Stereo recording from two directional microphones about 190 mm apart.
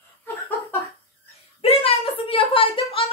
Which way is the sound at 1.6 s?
30° left (ahead or behind).